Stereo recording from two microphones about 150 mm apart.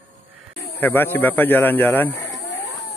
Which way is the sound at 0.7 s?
15° left (ahead or behind).